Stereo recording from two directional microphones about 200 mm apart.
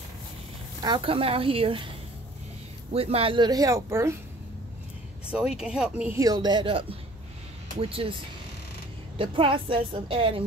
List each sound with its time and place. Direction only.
0.7 s speech: 25° right (ahead or behind)
2.9 s speech: 30° right (ahead or behind); by 4.2 s 15° right (ahead or behind)
5.3 s speech: 5° right (ahead or behind); by 8.2 s 30° right (ahead or behind)
9.2 s speech: 25° right (ahead or behind)